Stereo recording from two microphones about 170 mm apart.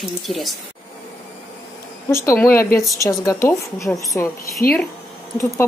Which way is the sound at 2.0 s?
15° left (ahead or behind).